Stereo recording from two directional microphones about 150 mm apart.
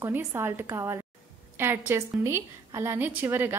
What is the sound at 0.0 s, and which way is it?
A woman's voice, 15° right (ahead or behind).